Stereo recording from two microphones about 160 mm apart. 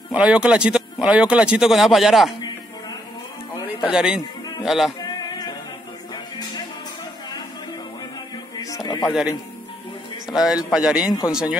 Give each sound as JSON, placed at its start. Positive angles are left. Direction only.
{"t": 0.1, "sound": "speech", "side_deg": -5}
{"t": 3.8, "sound": "speech", "side_deg": -5}
{"t": 8.5, "sound": "music", "side_deg": 20}
{"t": 9.0, "sound": "speech", "side_deg": -5}
{"t": 10.3, "sound": "speech", "side_deg": 0}
{"t": 11.1, "sound": "speech", "side_deg": 20}